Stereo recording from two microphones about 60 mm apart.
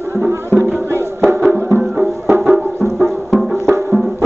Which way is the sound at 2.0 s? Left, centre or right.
Centre.